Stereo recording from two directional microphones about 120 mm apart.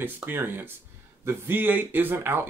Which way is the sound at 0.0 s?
20° right (ahead or behind).